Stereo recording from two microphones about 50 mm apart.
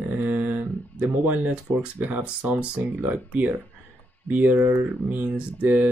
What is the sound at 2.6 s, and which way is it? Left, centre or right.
Speech, right.